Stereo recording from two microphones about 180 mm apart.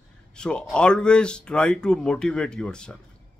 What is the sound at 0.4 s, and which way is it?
A man's voice, 5° left (ahead or behind).